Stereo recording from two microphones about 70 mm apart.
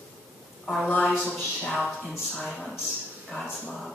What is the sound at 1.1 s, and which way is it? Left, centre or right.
Speech, centre.